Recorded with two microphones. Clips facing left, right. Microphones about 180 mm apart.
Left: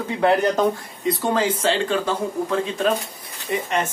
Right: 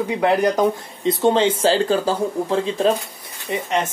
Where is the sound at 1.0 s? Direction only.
25° right (ahead or behind).